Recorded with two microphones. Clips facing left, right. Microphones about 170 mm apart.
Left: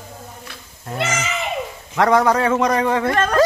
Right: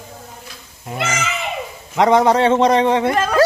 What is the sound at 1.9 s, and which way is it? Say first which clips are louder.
A man's voice: right 2 dB; 20° right (ahead or behind).